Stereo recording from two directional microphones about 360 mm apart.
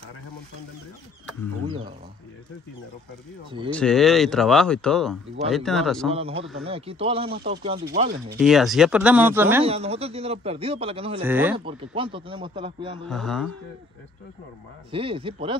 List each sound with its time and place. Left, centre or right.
1.7 s a sound: centre
3.7 s speech: centre
6.1 s speech: centre
8.4 s speech: centre
9.7 s speech: centre
11.2 s speech: centre
13.1 s speech: centre
14.9 s speech: centre